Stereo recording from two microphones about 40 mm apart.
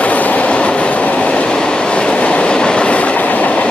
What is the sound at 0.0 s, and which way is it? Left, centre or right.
Train, left.